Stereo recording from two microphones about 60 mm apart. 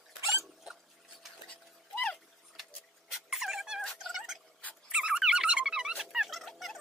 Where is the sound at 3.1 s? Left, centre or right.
Centre.